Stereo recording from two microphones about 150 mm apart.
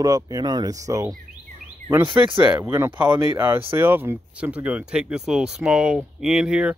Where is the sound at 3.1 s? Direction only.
30° right (ahead or behind).